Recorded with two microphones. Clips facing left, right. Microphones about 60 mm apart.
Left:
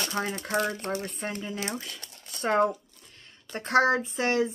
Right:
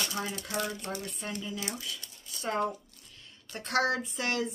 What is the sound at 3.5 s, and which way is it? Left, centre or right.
Speech, left.